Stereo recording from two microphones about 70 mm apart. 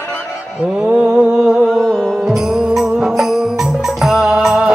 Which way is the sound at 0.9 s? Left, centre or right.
Centre.